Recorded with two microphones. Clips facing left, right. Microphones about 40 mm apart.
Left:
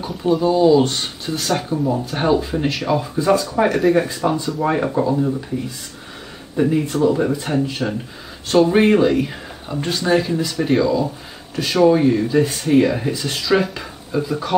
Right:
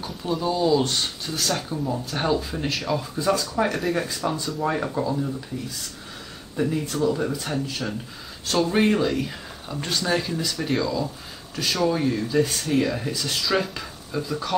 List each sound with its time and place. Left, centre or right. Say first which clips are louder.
0.0 s speech: left 8 dB; centre
3.6 s speech: left 10 dB; centre
3.9 s speech: left 8 dB; centre
6.5 s speech: left 7 dB; left